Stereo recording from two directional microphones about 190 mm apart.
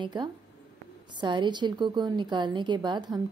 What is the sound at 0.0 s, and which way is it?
A woman's voice, 25° right (ahead or behind).